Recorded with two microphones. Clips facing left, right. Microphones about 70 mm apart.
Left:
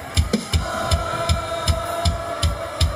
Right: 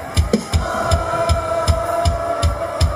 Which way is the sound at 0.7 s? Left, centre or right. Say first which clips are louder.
Right 5 dB; centre.